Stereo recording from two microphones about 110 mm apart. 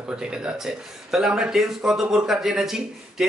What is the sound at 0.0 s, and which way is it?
Speech, 5° right (ahead or behind).